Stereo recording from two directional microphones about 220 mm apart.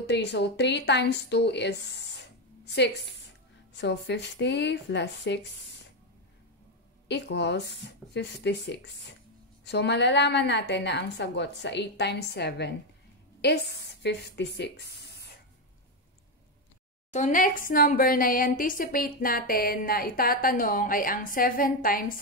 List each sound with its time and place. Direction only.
0.0 s a woman's voice: 50° left (ahead or behind)
7.1 s a woman's voice: 50° left (ahead or behind)
17.1 s a woman's voice: 35° left (ahead or behind)